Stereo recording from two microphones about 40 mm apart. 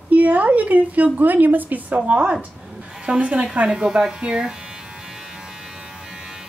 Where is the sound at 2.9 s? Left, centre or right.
Centre.